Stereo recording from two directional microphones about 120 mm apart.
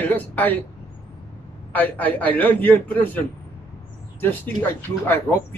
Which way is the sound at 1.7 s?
15° left (ahead or behind).